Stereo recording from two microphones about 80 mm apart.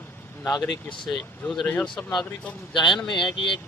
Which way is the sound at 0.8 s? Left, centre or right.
Left.